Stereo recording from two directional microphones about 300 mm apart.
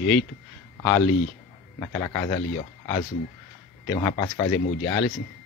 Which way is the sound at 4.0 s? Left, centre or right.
Centre.